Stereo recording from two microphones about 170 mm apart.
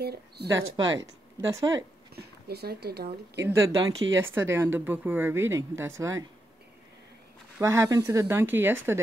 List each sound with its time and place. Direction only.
0.0 s a woman's voice: 70° right (ahead or behind)
0.5 s speech: 20° right (ahead or behind)
2.1 s speech: 70° right (ahead or behind)
3.3 s a woman's voice: 15° right (ahead or behind)
7.6 s a woman's voice: 15° right (ahead or behind)